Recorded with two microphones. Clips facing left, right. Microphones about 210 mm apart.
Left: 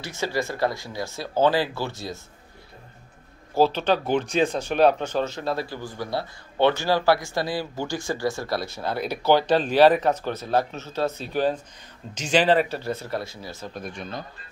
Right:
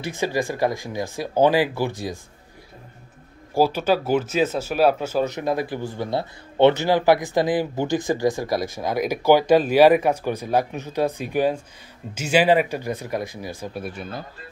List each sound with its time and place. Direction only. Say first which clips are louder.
0.0 s speech: right 3 dB; 15° right (ahead or behind)
3.5 s speech: right 1 dB; 10° right (ahead or behind)